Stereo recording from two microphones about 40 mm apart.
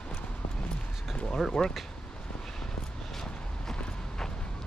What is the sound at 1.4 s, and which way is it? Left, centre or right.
Speech, centre.